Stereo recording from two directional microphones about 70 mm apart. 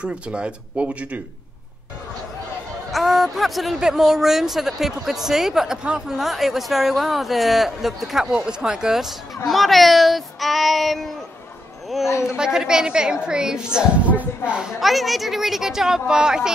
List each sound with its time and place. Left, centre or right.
0.0 s a woman's voice: centre
2.9 s speech: centre
12.4 s a woman's voice: centre
14.8 s speech: centre